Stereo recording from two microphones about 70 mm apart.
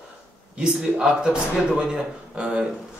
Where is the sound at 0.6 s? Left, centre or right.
Centre.